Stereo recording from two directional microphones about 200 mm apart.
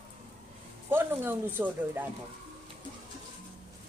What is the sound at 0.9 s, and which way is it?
Speech, 10° right (ahead or behind).